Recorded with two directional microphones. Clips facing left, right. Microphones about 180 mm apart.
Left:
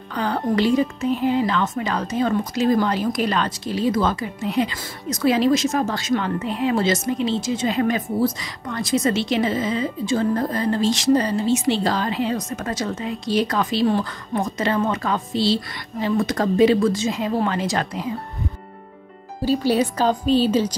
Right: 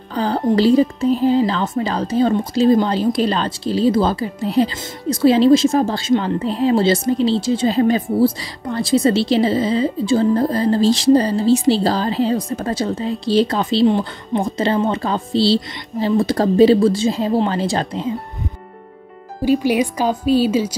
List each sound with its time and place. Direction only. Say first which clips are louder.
0.1 s a woman's voice: right 5 dB; 30° right (ahead or behind)
19.4 s speech: right 3 dB; 15° right (ahead or behind)